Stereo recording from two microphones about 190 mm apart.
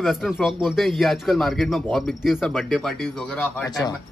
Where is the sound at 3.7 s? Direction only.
20° left (ahead or behind).